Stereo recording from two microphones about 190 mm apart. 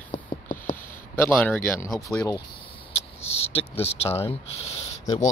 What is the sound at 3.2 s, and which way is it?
Speech, 35° left (ahead or behind).